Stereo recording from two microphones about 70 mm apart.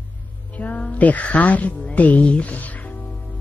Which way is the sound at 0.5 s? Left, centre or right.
Left.